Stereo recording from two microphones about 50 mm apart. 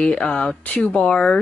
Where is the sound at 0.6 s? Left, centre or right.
Left.